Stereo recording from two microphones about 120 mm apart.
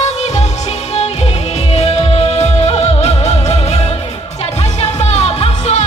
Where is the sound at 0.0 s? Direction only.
70° left (ahead or behind).